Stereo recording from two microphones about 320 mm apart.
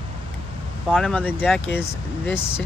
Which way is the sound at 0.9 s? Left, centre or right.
Centre.